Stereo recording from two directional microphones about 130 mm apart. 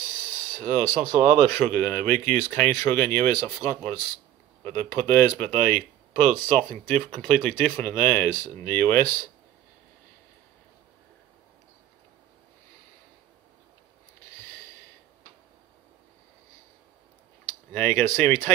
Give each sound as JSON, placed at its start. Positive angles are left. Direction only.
{"t": 0.7, "sound": "speech", "side_deg": 15}
{"t": 1.0, "sound": "speech", "side_deg": -45}
{"t": 1.5, "sound": "speech", "side_deg": 15}
{"t": 8.3, "sound": "speech", "side_deg": 20}
{"t": 17.7, "sound": "speech", "side_deg": 10}